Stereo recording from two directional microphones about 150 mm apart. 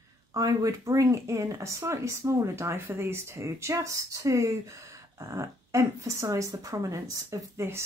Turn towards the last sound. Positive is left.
turn(degrees=-20)  # may be behind; listen again after turning